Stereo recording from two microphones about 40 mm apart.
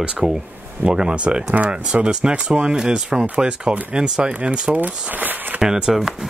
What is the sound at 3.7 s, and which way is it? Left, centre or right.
Speech, right.